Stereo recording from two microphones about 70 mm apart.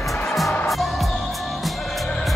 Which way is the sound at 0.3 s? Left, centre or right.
Centre.